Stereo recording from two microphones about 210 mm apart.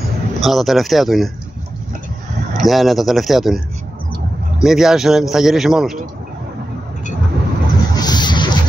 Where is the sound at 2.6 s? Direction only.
Centre (ahead or behind).